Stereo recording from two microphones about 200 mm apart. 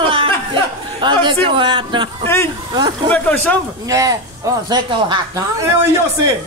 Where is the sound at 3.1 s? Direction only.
5° left (ahead or behind).